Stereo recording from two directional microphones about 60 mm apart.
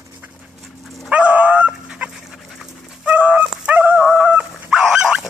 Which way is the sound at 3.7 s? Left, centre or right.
Right.